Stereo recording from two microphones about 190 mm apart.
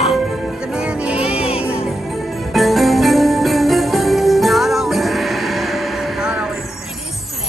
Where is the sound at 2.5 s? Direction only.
Centre (ahead or behind).